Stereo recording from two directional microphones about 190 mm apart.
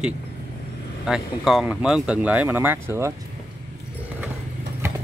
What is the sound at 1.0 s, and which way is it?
Speech, centre (ahead or behind).